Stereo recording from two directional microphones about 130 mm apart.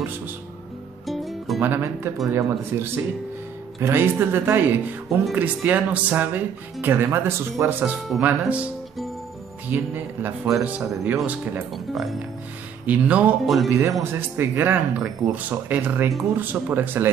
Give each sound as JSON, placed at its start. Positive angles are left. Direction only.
{"t": 1.0, "sound": "music", "side_deg": 0}
{"t": 1.6, "sound": "speech", "side_deg": -15}
{"t": 9.7, "sound": "speech", "side_deg": -15}
{"t": 11.7, "sound": "speech", "side_deg": 0}
{"t": 12.8, "sound": "speech", "side_deg": -10}